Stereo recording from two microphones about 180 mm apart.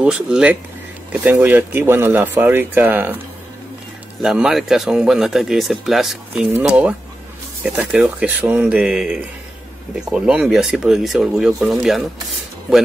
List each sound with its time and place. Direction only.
0.0 s speech: 5° right (ahead or behind)
4.2 s speech: centre (ahead or behind)